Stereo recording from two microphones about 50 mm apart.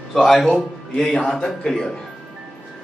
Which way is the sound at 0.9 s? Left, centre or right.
Centre.